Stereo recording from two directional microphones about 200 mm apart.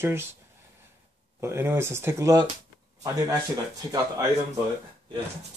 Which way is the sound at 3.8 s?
15° right (ahead or behind).